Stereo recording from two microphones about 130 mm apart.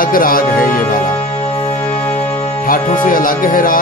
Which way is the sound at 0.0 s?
90° left.